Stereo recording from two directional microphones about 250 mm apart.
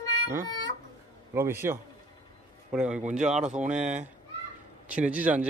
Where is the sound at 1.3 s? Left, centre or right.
Centre.